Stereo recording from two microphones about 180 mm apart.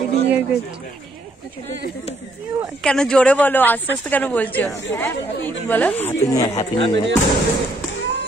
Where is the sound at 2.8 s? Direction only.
5° left (ahead or behind).